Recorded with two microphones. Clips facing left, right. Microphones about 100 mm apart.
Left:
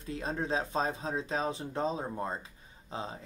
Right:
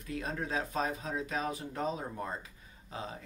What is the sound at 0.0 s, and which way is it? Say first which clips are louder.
Speech: left 2 dB; 30° left (ahead or behind).